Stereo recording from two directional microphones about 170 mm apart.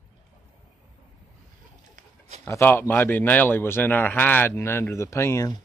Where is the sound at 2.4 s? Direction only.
15° left (ahead or behind).